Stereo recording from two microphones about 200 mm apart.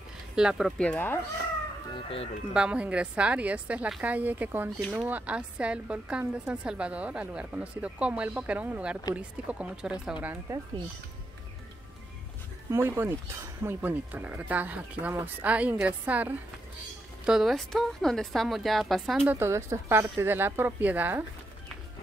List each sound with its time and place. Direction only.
0.4 s a woman's voice: 5° right (ahead or behind)
2.0 s speech: 25° left (ahead or behind)
2.5 s a woman's voice: 5° right (ahead or behind)
12.7 s a woman's voice: 10° right (ahead or behind)
19.3 s a woman's voice: 15° right (ahead or behind)